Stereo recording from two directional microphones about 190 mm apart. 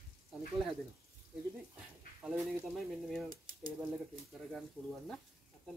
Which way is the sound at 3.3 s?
45° right (ahead or behind).